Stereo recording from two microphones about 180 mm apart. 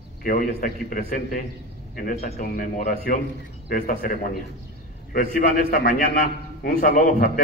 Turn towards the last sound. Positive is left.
turn(degrees=45)  # may be behind; listen again after turning